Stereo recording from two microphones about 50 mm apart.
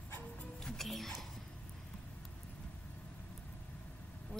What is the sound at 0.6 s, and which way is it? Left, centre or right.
Speech, centre.